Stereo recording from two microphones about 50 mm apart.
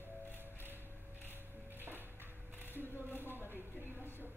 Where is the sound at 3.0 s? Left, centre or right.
Left.